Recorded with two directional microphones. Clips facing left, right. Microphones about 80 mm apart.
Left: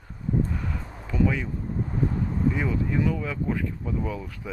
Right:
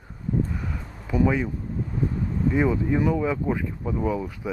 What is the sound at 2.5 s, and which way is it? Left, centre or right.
Speech, right.